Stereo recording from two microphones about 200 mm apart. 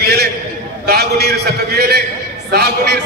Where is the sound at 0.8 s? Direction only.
55° right (ahead or behind).